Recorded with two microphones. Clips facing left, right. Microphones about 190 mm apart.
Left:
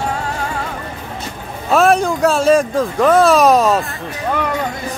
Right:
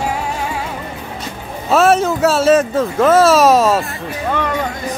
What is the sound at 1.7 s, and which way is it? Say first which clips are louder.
Speech: right 1 dB; 5° right (ahead or behind).